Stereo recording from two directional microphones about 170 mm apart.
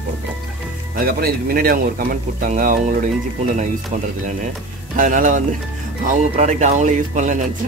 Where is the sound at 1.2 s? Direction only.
60° right (ahead or behind).